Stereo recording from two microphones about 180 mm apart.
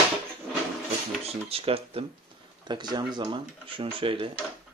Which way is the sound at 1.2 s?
35° right (ahead or behind).